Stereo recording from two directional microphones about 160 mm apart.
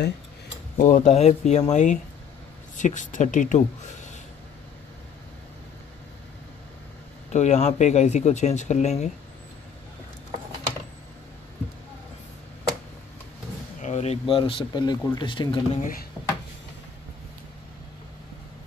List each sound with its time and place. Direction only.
0.7 s speech: 55° left (ahead or behind)
7.3 s speech: 45° left (ahead or behind)
13.7 s speech: 45° left (ahead or behind); by 15.6 s 30° left (ahead or behind)
15.7 s speech: 60° left (ahead or behind)